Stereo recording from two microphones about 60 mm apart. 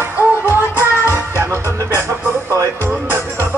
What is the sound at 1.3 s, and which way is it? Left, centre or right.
Music, right.